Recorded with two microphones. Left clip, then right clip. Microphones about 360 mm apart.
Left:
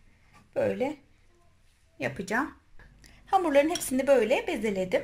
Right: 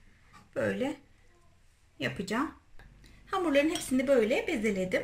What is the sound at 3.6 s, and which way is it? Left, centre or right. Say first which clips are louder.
Speech: left 3 dB; centre.